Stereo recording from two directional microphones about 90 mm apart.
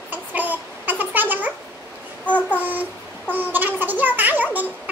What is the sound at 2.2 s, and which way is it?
Child singing, 15° left (ahead or behind).